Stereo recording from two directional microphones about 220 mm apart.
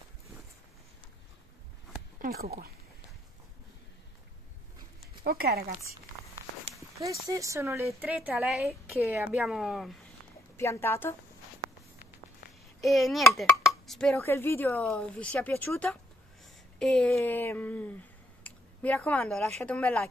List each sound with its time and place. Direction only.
2.2 s speech: 45° right (ahead or behind)
5.2 s speech: 45° right (ahead or behind)
7.0 s speech: 15° right (ahead or behind)
10.6 s a woman's voice: 10° left (ahead or behind)
12.8 s a child's voice: centre (ahead or behind)
18.4 s a sound: 5° left (ahead or behind)
19.6 s a child's voice: 5° left (ahead or behind)